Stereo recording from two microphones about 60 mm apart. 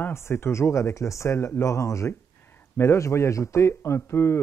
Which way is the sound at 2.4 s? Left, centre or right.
Left.